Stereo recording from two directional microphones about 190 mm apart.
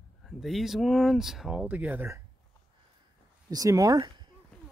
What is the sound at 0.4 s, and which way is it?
Speech, centre (ahead or behind).